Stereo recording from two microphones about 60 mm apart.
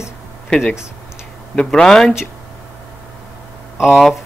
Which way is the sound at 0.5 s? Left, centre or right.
Centre.